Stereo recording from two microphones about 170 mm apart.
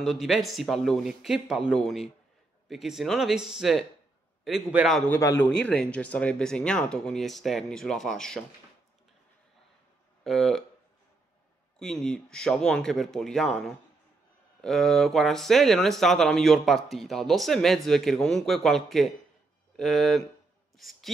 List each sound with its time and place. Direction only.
0.0 s speech: centre (ahead or behind)
5.2 s a man's voice: 15° left (ahead or behind)
10.2 s speech: centre (ahead or behind)
11.8 s speech: 5° left (ahead or behind)